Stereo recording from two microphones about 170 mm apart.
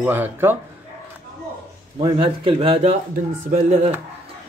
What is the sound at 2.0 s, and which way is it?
Speech, 35° right (ahead or behind).